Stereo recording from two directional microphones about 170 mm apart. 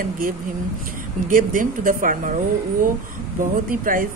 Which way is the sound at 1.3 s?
50° right (ahead or behind).